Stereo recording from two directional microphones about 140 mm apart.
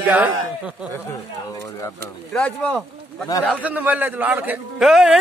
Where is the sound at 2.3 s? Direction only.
10° left (ahead or behind).